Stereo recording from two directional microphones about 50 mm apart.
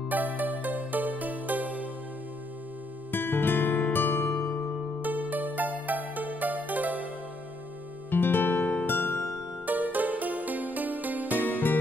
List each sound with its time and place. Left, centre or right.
0.1 s music: right
3.1 s music: left
5.0 s music: right
8.1 s music: left
9.7 s music: right